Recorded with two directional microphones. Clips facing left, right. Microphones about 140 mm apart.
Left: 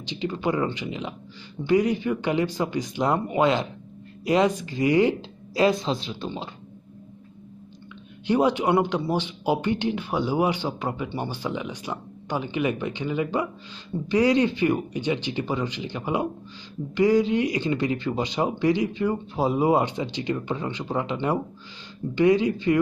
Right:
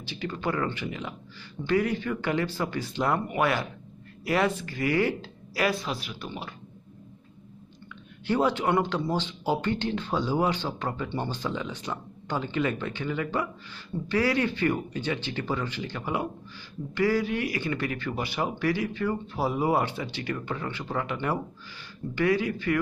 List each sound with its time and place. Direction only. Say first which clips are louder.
0.0 s speech: left 4 dB; 20° left (ahead or behind)
8.3 s speech: left 4 dB; 15° left (ahead or behind)